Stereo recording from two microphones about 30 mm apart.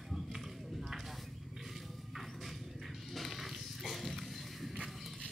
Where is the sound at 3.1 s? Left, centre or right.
Centre.